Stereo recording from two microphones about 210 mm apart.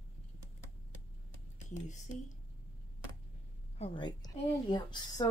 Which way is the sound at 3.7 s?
25° left (ahead or behind).